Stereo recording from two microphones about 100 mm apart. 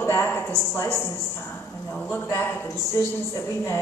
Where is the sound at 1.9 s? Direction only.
15° left (ahead or behind).